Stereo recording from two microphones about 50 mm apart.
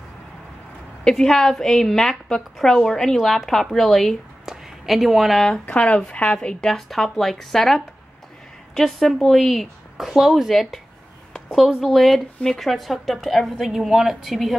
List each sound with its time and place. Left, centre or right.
1.0 s a woman's voice: centre
5.8 s a woman's voice: centre
6.5 s speech: centre
11.3 s a sound: centre
11.8 s speech: centre